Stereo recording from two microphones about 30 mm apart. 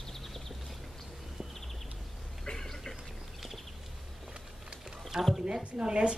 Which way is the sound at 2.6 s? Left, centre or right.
Centre.